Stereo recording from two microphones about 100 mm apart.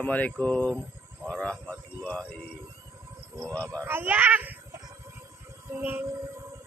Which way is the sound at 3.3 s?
35° right (ahead or behind).